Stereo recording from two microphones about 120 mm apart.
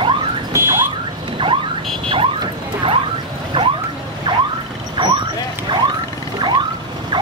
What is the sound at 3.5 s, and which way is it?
Boat, 45° right (ahead or behind).